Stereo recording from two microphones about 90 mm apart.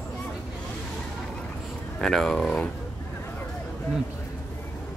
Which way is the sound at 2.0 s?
5° left (ahead or behind).